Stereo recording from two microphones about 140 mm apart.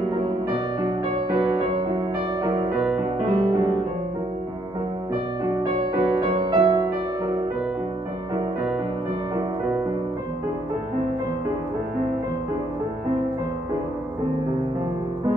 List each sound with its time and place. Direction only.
2.4 s music: 30° right (ahead or behind)
6.2 s music: 35° right (ahead or behind)